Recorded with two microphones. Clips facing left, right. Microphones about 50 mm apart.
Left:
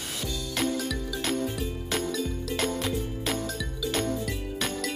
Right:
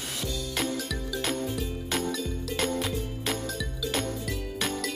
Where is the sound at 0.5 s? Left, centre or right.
Centre.